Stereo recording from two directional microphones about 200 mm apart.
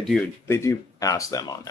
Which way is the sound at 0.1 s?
15° left (ahead or behind).